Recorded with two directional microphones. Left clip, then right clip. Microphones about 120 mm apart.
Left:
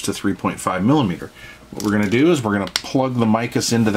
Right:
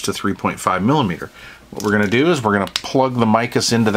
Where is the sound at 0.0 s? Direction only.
35° right (ahead or behind).